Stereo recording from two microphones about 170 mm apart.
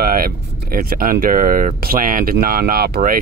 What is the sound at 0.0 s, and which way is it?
Speech, 60° right (ahead or behind).